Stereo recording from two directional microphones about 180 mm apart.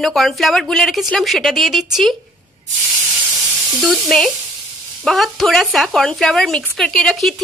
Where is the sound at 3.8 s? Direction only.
Centre (ahead or behind).